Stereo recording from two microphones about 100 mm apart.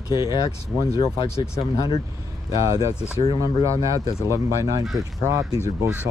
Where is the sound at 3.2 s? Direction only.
60° left (ahead or behind).